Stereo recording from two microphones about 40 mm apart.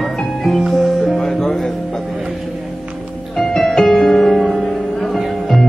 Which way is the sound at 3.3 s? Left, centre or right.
Centre.